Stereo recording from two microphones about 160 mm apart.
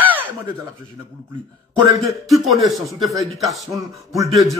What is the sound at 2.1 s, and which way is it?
Speech, centre (ahead or behind).